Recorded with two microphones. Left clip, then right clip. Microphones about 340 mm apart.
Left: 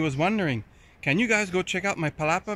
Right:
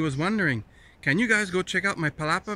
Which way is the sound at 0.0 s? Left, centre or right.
Centre.